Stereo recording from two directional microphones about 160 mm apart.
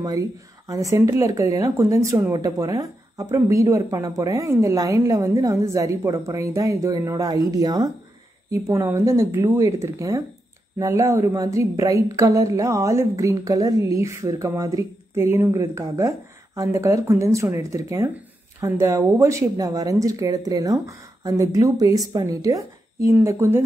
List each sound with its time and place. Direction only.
0.7 s a woman's voice: 20° right (ahead or behind)